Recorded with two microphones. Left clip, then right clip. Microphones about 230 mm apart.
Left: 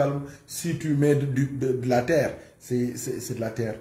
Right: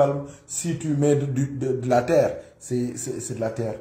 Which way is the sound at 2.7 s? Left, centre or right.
Centre.